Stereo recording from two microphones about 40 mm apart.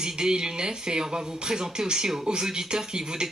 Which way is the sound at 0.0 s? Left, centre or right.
Centre.